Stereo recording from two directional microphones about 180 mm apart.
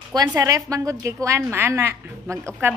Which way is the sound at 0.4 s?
20° right (ahead or behind).